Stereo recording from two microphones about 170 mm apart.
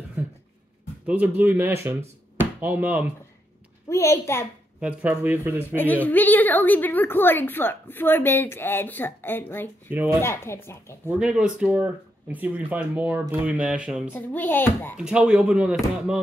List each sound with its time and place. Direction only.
0.2 s a sound: 10° right (ahead or behind)
1.0 s speech: 10° right (ahead or behind)
3.9 s a woman's voice: 15° left (ahead or behind)
4.7 s speech: 10° right (ahead or behind)
5.8 s a woman's voice: 10° left (ahead or behind)
9.8 s speech: 15° right (ahead or behind)
10.2 s a woman's voice: 15° left (ahead or behind)
11.1 s speech: 5° right (ahead or behind)
14.1 s a woman's voice: 10° left (ahead or behind)
15.0 s speech: 5° right (ahead or behind)